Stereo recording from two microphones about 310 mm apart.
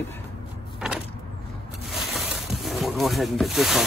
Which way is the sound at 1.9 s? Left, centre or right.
Centre.